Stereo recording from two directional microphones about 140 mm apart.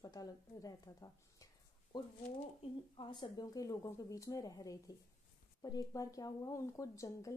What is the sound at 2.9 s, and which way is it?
Speech, 35° left (ahead or behind).